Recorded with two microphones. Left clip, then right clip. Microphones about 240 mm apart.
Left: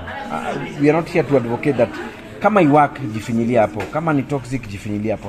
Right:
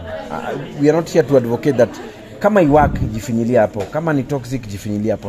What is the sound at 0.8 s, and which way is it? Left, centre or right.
Speech, right.